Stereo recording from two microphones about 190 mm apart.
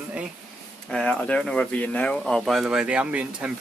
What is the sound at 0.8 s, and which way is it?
Speech, 5° left (ahead or behind).